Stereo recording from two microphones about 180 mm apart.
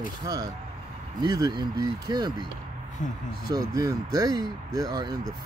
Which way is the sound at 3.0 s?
45° left (ahead or behind).